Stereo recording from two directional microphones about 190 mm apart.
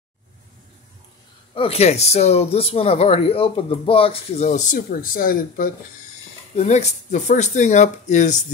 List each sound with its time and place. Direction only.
1.5 s speech: 30° left (ahead or behind); by 5.7 s 45° left (ahead or behind)
6.5 s speech: 35° left (ahead or behind)